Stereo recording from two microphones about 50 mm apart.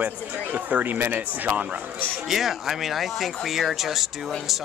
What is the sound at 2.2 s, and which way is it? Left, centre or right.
Speech, centre.